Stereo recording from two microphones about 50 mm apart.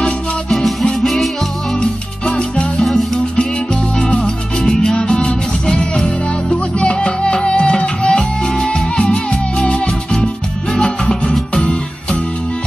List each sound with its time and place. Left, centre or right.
0.5 s music: centre
1.8 s music: centre
4.6 s music: centre